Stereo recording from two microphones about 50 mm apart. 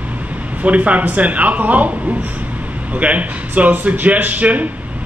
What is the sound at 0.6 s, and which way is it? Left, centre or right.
Speech, right.